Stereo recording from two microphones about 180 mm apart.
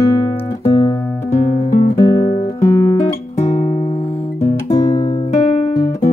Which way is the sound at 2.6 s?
15° left (ahead or behind).